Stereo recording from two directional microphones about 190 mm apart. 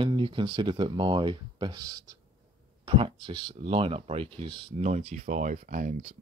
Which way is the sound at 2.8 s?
30° right (ahead or behind).